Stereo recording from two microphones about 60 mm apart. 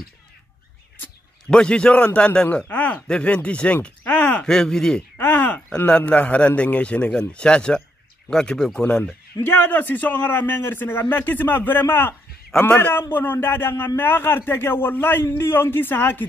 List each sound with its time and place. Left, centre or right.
1.5 s a man's voice: centre
3.4 s a sound: left
4.5 s speech: centre
5.1 s a sound: left
5.9 s a man's voice: left
9.4 s a man's voice: left